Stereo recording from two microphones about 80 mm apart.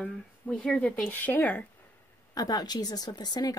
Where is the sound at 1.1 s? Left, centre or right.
Left.